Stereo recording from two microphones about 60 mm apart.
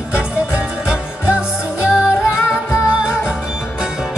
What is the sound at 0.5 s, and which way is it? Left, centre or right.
Music, centre.